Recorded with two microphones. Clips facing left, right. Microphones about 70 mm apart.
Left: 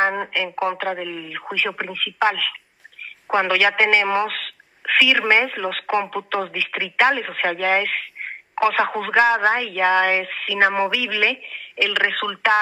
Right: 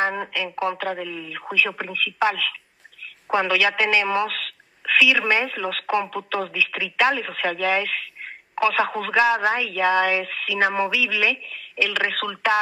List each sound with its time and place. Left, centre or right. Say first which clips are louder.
0.0 s a woman's voice: left 3 dB; left